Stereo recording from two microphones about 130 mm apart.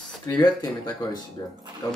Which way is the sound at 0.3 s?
30° left (ahead or behind).